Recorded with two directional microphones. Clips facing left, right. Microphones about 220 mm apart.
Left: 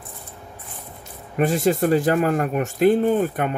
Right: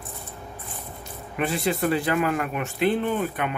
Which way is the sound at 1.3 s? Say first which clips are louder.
Left 6 dB; 45° left (ahead or behind).